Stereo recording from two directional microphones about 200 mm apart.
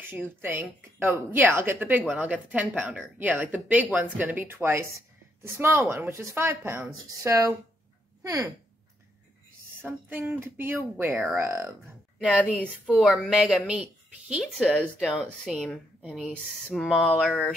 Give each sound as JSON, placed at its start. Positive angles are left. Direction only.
{"t": 0.0, "sound": "a woman's voice", "side_deg": -10}
{"t": 9.8, "sound": "a woman's voice", "side_deg": -10}
{"t": 12.3, "sound": "a woman's voice", "side_deg": 0}